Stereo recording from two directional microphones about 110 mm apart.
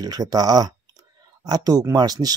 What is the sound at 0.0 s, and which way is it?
Speech, 35° right (ahead or behind).